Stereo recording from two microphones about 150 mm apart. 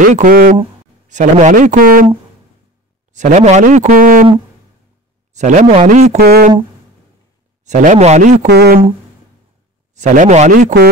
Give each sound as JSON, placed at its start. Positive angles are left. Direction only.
{"t": 0.0, "sound": "speech", "side_deg": -65}
{"t": 1.0, "sound": "a man's voice", "side_deg": -55}
{"t": 3.1, "sound": "speech", "side_deg": -55}
{"t": 3.8, "sound": "speech", "side_deg": -70}
{"t": 5.3, "sound": "speech", "side_deg": -50}
{"t": 6.1, "sound": "speech", "side_deg": -90}
{"t": 7.6, "sound": "speech", "side_deg": -55}
{"t": 8.5, "sound": "speech", "side_deg": -90}
{"t": 9.9, "sound": "speech", "side_deg": -55}